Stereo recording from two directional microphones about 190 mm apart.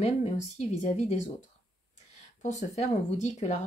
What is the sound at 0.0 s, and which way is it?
Speech, 35° left (ahead or behind).